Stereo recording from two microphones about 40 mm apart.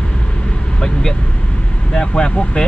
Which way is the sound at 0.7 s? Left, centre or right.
Left.